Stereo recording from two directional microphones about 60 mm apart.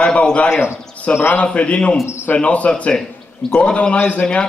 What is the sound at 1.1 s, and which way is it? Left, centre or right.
Speech, left.